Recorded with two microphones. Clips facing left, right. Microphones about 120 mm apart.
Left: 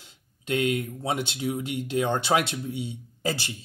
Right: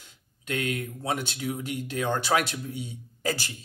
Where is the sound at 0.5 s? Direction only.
25° left (ahead or behind).